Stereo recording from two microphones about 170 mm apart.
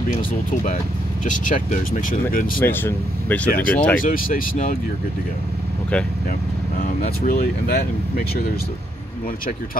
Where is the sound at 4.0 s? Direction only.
55° left (ahead or behind).